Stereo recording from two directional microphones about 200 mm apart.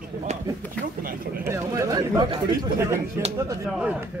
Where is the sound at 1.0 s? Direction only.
45° right (ahead or behind).